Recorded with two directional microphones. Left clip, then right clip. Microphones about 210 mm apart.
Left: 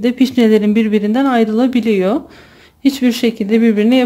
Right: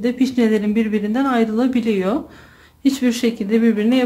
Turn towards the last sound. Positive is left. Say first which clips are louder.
# left 5 dB
turn(degrees=35)  # may be behind; listen again after turning